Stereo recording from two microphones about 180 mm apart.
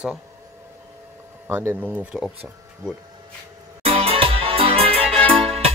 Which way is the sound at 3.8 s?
30° right (ahead or behind).